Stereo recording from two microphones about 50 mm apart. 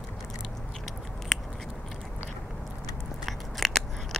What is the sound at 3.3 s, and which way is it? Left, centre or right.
Biting, centre.